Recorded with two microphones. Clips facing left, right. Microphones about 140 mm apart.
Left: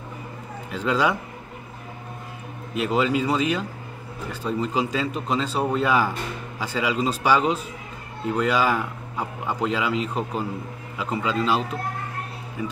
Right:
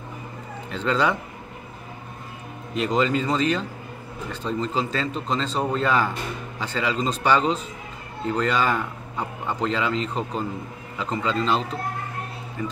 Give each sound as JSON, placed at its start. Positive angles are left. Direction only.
{"t": 0.7, "sound": "speech", "side_deg": 10}
{"t": 2.7, "sound": "speech", "side_deg": 5}